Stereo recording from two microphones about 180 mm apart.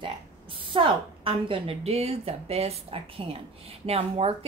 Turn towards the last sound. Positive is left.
turn(degrees=-35)  # may be behind; listen again after turning